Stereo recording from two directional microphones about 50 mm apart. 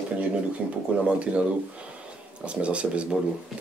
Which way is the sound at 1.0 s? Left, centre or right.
Right.